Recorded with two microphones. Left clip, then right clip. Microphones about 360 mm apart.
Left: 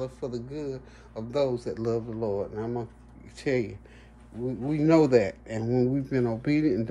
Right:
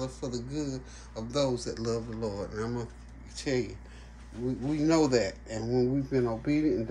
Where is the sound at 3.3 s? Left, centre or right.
Left.